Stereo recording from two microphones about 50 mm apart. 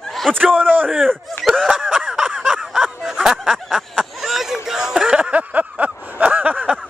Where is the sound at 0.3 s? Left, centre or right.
Centre.